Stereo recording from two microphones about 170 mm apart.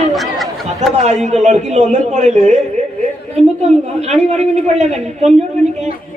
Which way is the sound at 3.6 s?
40° right (ahead or behind).